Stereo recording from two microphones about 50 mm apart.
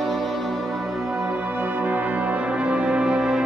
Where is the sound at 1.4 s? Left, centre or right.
Right.